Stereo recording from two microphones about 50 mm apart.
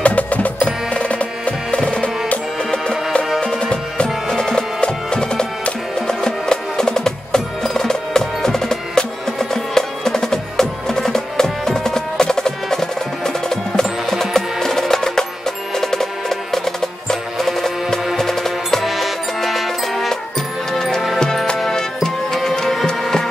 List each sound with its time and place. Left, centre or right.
0.0 s music: left
3.3 s music: centre